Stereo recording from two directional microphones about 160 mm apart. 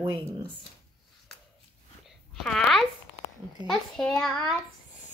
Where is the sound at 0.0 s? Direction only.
35° right (ahead or behind).